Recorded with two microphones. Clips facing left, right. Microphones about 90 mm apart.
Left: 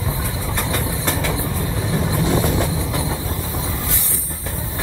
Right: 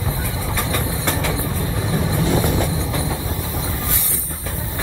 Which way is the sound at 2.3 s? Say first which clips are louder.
Even; 20° left (ahead or behind).